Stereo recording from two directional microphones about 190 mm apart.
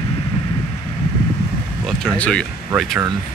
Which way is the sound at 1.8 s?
5° left (ahead or behind).